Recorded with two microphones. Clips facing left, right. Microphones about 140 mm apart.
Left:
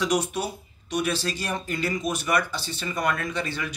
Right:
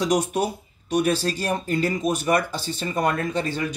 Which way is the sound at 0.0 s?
45° right (ahead or behind).